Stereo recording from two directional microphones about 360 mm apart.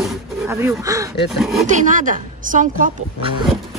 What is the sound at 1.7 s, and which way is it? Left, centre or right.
Speech, right.